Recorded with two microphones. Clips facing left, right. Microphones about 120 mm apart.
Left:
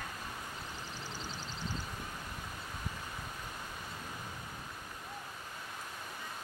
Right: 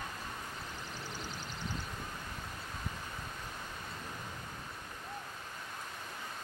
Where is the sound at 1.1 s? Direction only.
15° right (ahead or behind).